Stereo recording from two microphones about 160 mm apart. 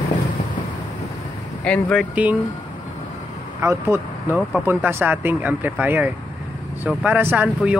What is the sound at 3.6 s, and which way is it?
Speech, 15° right (ahead or behind).